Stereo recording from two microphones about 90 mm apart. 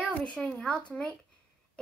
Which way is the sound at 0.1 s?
15° left (ahead or behind).